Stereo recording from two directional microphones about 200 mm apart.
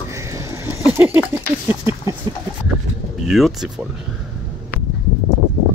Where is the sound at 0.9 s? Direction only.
10° right (ahead or behind).